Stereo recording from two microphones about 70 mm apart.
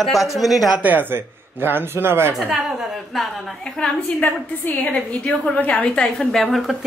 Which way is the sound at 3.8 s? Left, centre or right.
Centre.